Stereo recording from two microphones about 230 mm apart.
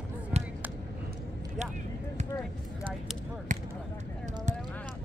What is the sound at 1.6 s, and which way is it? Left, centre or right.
Speech, right.